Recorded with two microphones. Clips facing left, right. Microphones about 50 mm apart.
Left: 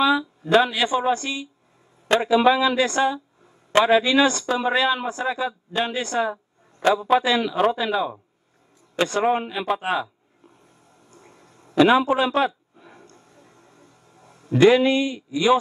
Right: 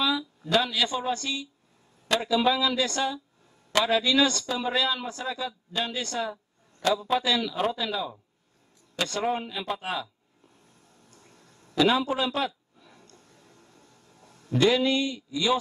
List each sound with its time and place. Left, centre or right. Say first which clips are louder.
0.0 s a man's voice: left 7 dB; left
11.1 s a sound: left 7 dB; left
14.6 s a man's voice: left 7 dB; left